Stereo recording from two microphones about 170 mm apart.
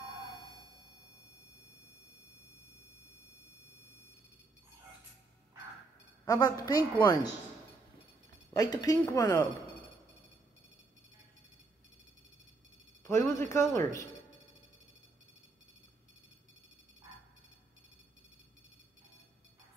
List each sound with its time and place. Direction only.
6.2 s a woman's voice: 20° left (ahead or behind)
8.5 s a woman's voice: 20° left (ahead or behind)
13.0 s a sound: 20° left (ahead or behind)